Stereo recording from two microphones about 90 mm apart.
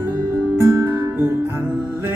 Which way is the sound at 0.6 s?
25° right (ahead or behind).